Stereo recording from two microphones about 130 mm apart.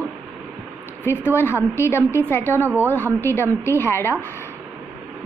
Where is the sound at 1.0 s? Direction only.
15° left (ahead or behind).